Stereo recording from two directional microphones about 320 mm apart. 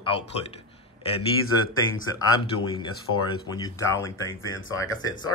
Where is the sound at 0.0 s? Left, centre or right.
Centre.